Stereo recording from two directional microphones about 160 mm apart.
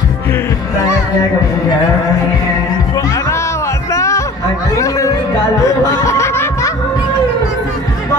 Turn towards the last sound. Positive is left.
turn(degrees=15)  # may be behind; listen again after turning